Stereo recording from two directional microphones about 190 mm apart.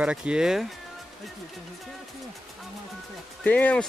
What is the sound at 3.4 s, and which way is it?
Speech, 10° left (ahead or behind).